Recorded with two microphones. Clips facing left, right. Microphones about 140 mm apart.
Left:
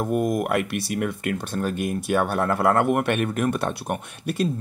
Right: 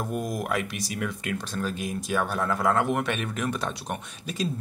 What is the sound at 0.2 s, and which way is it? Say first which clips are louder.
Speech: left 6 dB; 55° left (ahead or behind).